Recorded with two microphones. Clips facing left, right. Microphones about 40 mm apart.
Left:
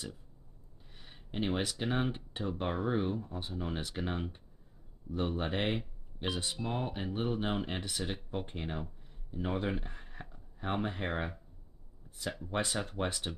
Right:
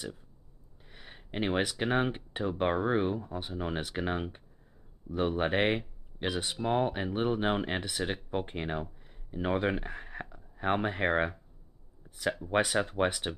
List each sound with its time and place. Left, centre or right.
0.8 s a sound: right
1.8 s speech: right
5.1 s speech: right
6.6 s speech: right
9.0 s a sound: right
10.3 s speech: right
12.5 s speech: right